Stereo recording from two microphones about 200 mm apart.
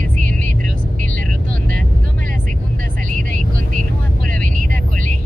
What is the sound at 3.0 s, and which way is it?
Vehicle, 40° right (ahead or behind).